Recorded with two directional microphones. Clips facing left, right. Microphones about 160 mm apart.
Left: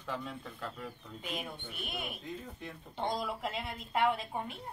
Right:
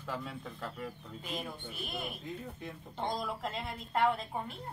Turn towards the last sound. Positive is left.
turn(degrees=0)  # may be behind; listen again after turning